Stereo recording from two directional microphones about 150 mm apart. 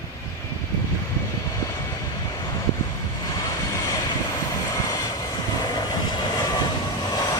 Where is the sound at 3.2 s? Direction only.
25° left (ahead or behind).